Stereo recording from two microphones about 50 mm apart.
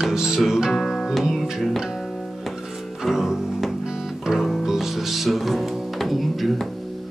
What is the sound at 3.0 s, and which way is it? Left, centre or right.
Music, centre.